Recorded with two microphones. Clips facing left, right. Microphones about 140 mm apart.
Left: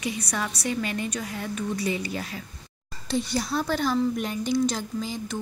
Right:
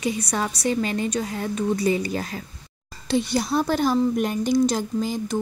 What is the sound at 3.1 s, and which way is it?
Speech, 75° right (ahead or behind).